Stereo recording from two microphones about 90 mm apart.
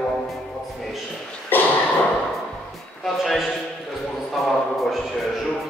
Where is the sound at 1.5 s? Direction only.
20° left (ahead or behind).